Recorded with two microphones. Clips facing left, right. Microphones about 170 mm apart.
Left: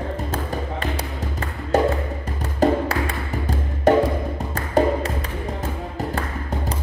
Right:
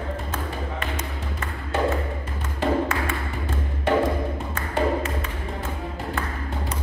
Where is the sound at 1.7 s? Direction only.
40° left (ahead or behind).